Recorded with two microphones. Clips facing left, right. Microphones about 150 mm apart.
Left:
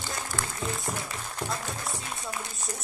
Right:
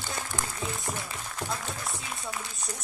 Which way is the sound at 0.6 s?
Centre (ahead or behind).